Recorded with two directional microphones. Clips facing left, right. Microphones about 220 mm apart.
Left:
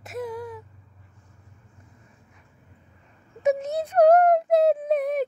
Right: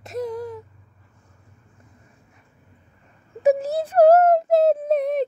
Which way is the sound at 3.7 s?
30° right (ahead or behind).